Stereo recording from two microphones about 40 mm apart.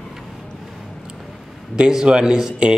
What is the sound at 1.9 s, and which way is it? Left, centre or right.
Speech, centre.